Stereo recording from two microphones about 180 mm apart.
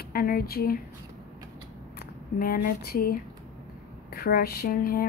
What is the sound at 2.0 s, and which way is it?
Speech, 55° left (ahead or behind).